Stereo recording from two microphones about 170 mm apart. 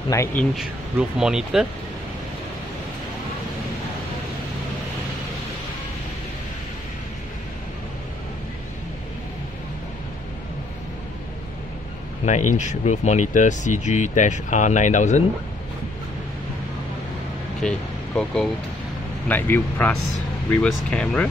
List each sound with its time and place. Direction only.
0.1 s a man's voice: 15° left (ahead or behind)
0.6 s speech: 5° right (ahead or behind)
12.3 s speech: 45° left (ahead or behind)
17.6 s a man's voice: 5° left (ahead or behind)